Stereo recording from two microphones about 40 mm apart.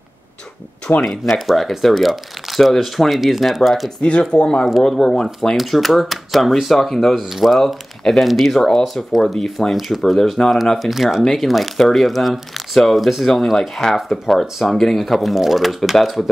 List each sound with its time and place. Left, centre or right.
1.0 s speech: centre
4.0 s speech: left
4.8 s speech: centre
5.6 s speech: centre
7.2 s speech: centre